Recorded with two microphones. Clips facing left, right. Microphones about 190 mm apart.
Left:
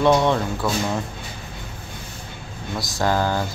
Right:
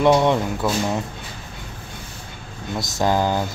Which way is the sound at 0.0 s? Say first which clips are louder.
Right 1 dB; 15° right (ahead or behind).